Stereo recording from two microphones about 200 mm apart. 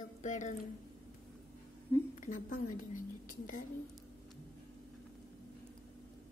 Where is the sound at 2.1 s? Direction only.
40° left (ahead or behind).